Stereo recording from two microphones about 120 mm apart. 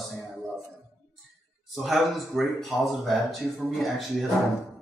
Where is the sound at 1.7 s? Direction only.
Centre (ahead or behind).